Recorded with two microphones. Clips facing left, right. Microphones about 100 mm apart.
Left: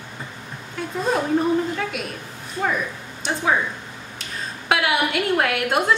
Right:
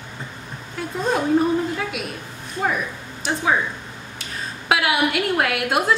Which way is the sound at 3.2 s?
Centre (ahead or behind).